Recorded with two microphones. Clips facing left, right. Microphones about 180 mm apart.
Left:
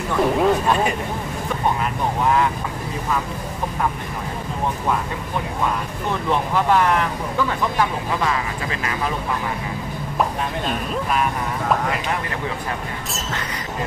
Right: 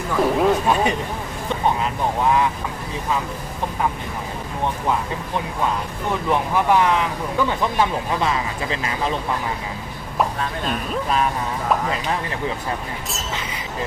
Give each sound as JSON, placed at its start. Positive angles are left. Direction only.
{"t": 0.1, "sound": "speech", "side_deg": 0}
{"t": 6.5, "sound": "speech", "side_deg": -15}
{"t": 7.8, "sound": "speech", "side_deg": -25}